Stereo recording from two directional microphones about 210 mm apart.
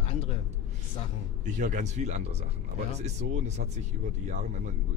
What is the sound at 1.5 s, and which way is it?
Speech, 35° right (ahead or behind).